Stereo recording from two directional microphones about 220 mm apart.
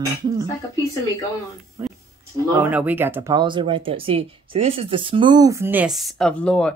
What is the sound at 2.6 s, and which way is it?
Speech, 5° right (ahead or behind).